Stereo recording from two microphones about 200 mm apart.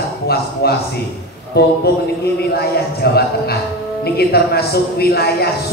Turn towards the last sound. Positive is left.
turn(degrees=50)  # may be behind; listen again after turning